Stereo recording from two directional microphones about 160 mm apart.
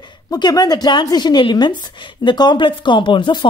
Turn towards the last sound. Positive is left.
turn(degrees=30)  # may be behind; listen again after turning